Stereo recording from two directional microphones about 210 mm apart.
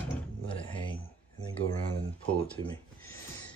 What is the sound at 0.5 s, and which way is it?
Music, 25° left (ahead or behind).